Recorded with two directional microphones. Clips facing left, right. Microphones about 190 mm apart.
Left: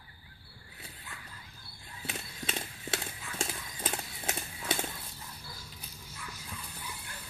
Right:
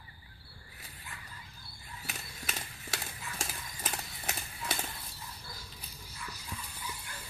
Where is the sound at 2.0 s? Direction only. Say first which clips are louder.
Left 5 dB; 30° left (ahead or behind).